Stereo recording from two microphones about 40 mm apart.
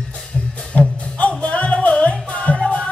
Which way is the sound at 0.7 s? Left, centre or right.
Left.